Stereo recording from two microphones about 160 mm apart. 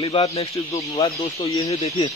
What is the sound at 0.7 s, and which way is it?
Speech, 20° left (ahead or behind).